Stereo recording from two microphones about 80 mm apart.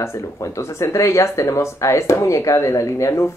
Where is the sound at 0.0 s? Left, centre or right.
Left.